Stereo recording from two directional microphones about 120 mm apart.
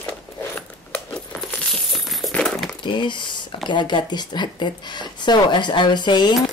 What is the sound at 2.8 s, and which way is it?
Speech, 40° left (ahead or behind).